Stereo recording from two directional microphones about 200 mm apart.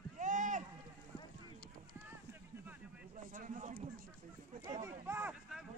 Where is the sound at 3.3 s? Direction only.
40° right (ahead or behind).